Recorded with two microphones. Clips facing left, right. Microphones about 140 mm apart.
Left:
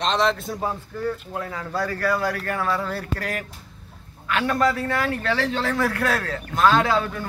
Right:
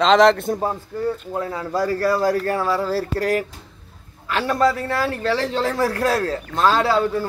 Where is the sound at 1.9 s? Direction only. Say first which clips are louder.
Right 5 dB; 35° right (ahead or behind).